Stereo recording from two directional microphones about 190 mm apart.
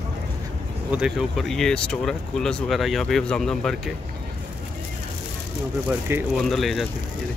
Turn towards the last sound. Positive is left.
turn(degrees=0)  # may be behind; listen again after turning